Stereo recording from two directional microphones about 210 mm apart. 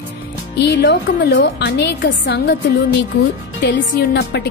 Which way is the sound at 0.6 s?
55° left (ahead or behind).